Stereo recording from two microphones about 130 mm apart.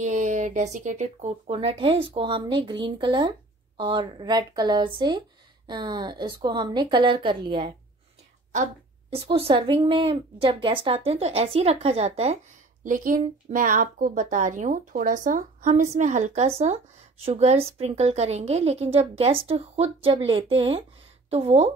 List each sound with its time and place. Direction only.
0.0 s a woman's voice: 70° right (ahead or behind); by 7.7 s 40° right (ahead or behind)
9.1 s speech: 45° right (ahead or behind)
12.8 s a woman's voice: 90° right; by 21.7 s 50° right (ahead or behind)